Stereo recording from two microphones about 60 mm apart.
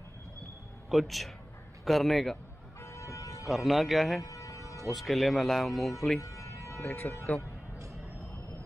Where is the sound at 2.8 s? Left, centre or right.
Left.